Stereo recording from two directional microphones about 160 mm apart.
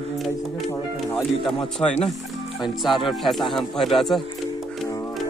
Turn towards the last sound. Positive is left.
turn(degrees=0)  # may be behind; listen again after turning